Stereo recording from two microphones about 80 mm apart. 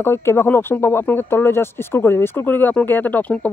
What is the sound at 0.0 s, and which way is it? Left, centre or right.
Speech, left.